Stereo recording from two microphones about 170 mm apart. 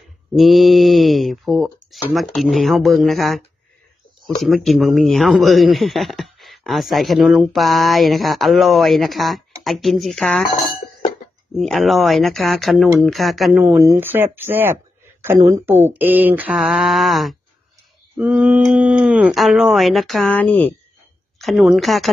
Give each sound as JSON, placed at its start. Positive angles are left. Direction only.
{"t": 0.4, "sound": "speech", "side_deg": 0}
{"t": 21.4, "sound": "speech", "side_deg": 0}